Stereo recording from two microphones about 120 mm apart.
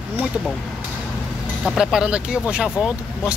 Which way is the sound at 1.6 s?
5° right (ahead or behind).